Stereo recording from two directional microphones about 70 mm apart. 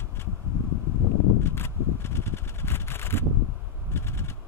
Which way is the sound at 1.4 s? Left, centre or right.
Left.